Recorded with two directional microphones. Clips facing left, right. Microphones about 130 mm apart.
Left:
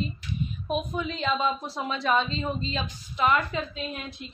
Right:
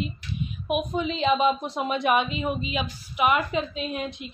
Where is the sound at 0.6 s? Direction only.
15° right (ahead or behind).